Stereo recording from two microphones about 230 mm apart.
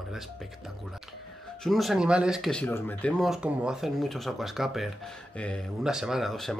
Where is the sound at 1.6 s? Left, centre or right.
Centre.